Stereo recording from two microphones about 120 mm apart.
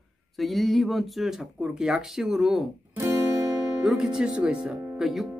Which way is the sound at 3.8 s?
5° right (ahead or behind).